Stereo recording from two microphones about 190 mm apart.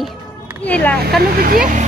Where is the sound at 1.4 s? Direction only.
50° right (ahead or behind).